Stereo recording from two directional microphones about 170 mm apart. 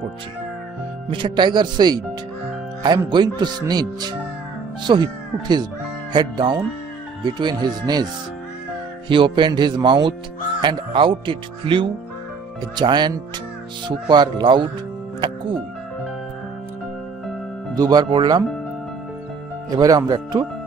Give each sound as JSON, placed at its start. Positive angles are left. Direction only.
{"t": 1.1, "sound": "speech", "side_deg": -30}
{"t": 3.1, "sound": "speech", "side_deg": -25}
{"t": 9.1, "sound": "speech", "side_deg": -30}
{"t": 15.1, "sound": "music", "side_deg": -30}
{"t": 17.7, "sound": "speech", "side_deg": -25}
{"t": 19.7, "sound": "speech", "side_deg": -20}